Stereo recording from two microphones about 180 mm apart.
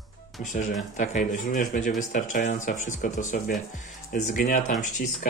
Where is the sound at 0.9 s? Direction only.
40° left (ahead or behind).